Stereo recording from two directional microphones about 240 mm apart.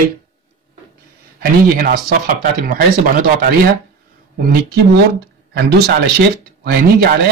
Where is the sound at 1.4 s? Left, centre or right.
Right.